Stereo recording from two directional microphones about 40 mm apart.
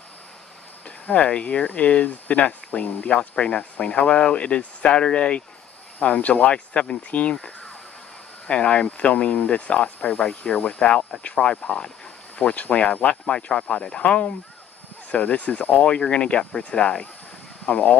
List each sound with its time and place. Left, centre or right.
0.8 s speech: left
5.9 s speech: left